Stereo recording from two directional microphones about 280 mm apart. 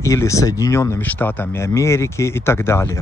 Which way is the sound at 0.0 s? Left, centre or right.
Centre.